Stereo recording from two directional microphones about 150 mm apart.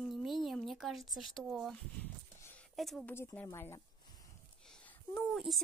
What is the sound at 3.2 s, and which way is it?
Speech, 20° left (ahead or behind).